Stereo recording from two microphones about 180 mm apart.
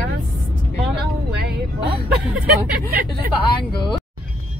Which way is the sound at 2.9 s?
60° right (ahead or behind).